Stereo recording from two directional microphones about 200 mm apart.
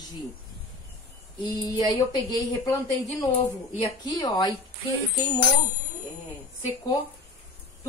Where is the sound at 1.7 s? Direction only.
20° left (ahead or behind).